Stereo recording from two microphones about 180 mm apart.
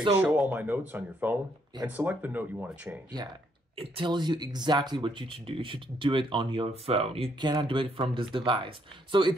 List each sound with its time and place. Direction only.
0.2 s speech: 10° right (ahead or behind)
3.7 s speech: 30° right (ahead or behind)